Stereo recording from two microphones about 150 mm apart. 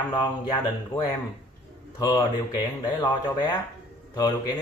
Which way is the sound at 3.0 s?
30° left (ahead or behind).